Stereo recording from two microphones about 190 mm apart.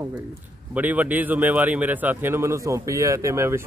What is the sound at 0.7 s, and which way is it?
A man's voice, 10° right (ahead or behind).